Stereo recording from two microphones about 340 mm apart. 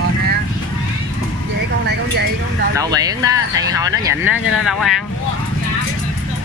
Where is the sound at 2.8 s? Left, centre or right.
Centre.